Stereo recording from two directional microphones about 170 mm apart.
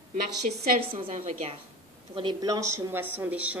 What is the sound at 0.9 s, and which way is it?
A woman's voice, 35° right (ahead or behind).